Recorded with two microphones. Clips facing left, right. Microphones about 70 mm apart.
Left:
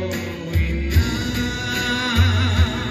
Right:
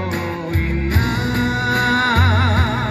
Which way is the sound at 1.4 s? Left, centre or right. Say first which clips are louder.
Right 6 dB; right.